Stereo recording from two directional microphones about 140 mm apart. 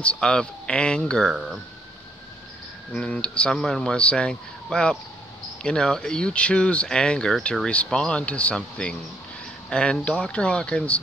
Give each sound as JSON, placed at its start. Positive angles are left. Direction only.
{"t": 0.0, "sound": "speech", "side_deg": 5}
{"t": 2.9, "sound": "speech", "side_deg": 10}